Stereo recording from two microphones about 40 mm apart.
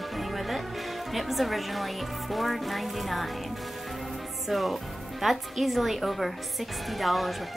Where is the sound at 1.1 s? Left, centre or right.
Centre.